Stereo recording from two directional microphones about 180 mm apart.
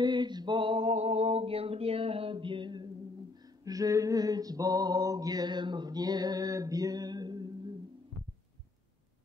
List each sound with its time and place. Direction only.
0.0 s male singing: 25° right (ahead or behind)
3.6 s mantra: 20° right (ahead or behind)